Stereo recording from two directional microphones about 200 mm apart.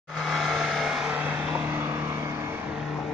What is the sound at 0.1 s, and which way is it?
Vehicle, centre (ahead or behind).